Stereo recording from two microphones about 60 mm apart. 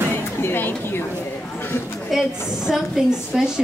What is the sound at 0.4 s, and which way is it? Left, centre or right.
Speech, left.